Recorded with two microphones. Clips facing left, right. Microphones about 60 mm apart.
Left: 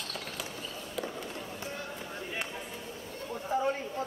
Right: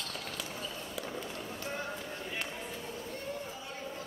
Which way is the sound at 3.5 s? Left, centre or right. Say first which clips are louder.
Left 15 dB; left.